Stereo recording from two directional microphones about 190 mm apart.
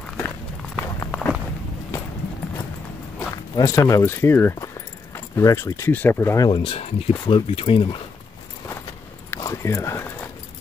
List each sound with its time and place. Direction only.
0.9 s walk: 10° left (ahead or behind)
1.9 s clip-clop: 15° left (ahead or behind)
3.2 s speech: 15° left (ahead or behind)
9.3 s a sound: 15° left (ahead or behind)